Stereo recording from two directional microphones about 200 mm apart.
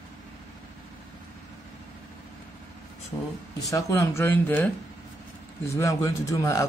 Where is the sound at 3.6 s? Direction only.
15° left (ahead or behind).